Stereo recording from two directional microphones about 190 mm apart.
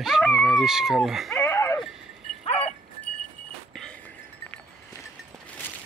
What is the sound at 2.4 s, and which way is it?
Dog, 30° left (ahead or behind).